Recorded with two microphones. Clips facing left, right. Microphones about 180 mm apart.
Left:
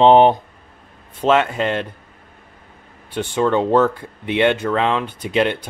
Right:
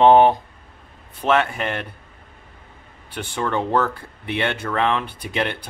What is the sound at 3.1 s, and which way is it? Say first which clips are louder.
Speech: left 6 dB; 20° left (ahead or behind).